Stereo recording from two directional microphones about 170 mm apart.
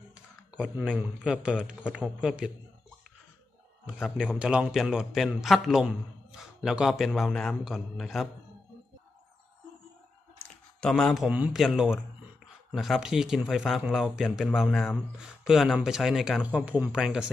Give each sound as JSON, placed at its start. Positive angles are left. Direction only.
{"t": 0.1, "sound": "speech", "side_deg": -5}
{"t": 3.8, "sound": "speech", "side_deg": -5}
{"t": 10.4, "sound": "speech", "side_deg": 5}